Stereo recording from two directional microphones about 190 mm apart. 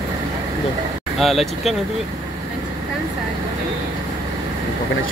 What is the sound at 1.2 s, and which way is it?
Speech, centre (ahead or behind).